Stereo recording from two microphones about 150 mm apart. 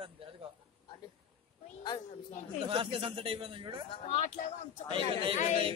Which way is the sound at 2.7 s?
35° right (ahead or behind).